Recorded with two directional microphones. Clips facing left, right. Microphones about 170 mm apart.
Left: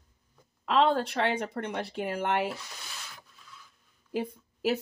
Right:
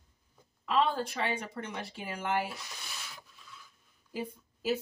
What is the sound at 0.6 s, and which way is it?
Speech, 75° left (ahead or behind).